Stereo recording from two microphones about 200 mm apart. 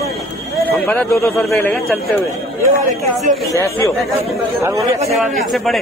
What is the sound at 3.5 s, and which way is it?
Speech, 15° left (ahead or behind).